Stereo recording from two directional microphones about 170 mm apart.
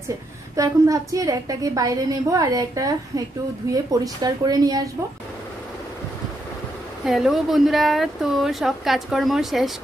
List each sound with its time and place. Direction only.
0.6 s a woman's voice: 20° right (ahead or behind)
7.1 s speech: centre (ahead or behind)